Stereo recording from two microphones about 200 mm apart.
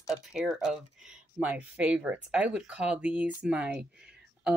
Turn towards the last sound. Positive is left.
turn(degrees=0)  # may be behind; listen again after turning